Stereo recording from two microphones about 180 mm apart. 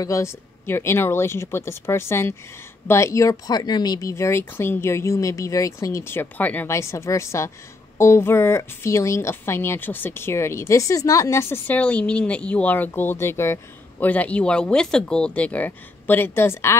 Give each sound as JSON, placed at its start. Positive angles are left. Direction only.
{"t": 0.0, "sound": "speech", "side_deg": 15}